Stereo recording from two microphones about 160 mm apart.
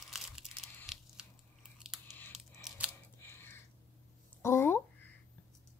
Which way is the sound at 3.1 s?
15° left (ahead or behind).